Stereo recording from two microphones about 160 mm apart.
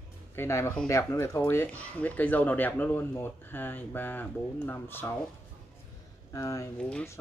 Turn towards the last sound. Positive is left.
turn(degrees=10)  # may be behind; listen again after turning